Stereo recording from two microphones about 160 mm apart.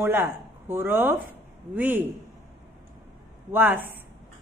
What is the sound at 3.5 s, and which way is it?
Speech, 10° right (ahead or behind).